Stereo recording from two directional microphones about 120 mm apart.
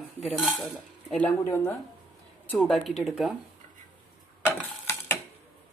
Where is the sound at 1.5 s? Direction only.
15° left (ahead or behind).